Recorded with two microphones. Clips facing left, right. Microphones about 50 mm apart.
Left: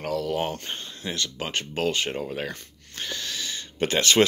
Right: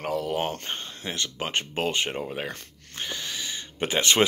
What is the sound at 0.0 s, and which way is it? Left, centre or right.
Speech, right.